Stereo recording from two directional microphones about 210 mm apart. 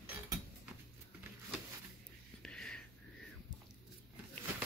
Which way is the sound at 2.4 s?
5° left (ahead or behind).